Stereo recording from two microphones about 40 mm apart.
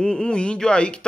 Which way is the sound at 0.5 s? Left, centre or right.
Left.